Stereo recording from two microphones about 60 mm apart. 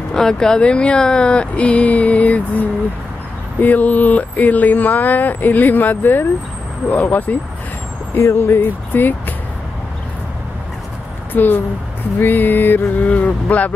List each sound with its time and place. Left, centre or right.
0.1 s speech: centre
3.6 s speech: left
8.2 s speech: left
11.3 s speech: left